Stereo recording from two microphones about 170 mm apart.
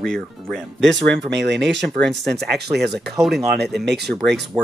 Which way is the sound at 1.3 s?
90° right.